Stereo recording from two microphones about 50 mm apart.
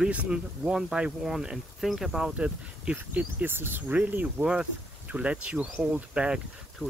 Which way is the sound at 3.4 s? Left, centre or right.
Right.